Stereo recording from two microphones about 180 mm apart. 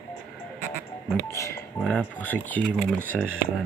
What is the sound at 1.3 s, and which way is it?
Speech, 15° left (ahead or behind).